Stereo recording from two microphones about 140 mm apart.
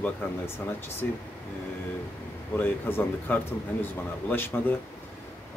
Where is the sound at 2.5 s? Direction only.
15° left (ahead or behind).